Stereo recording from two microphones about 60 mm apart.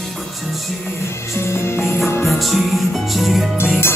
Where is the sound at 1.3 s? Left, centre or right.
Left.